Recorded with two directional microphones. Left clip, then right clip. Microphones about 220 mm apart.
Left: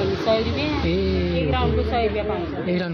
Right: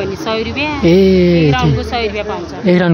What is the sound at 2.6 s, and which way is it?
Speech, 30° right (ahead or behind).